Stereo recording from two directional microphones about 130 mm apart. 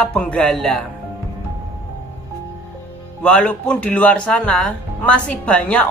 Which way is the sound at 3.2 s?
10° left (ahead or behind).